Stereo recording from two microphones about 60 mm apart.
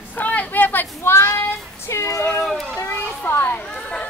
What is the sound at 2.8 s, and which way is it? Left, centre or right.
Children playing, left.